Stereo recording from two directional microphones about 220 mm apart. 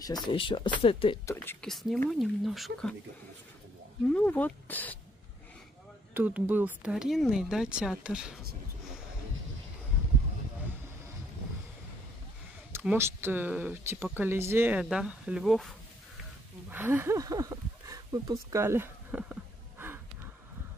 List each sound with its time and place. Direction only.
0.0 s speech: 20° left (ahead or behind)
1.2 s speech: 10° left (ahead or behind)
4.1 s speech: 5° left (ahead or behind)
6.1 s speech: 10° right (ahead or behind)
12.7 s speech: 10° right (ahead or behind)
16.7 s speech: 10° right (ahead or behind)